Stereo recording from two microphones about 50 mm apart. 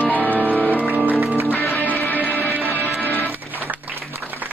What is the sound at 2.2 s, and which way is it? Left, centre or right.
Music, left.